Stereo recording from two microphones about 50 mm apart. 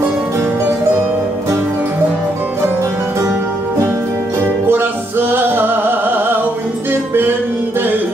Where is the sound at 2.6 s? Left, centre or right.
Right.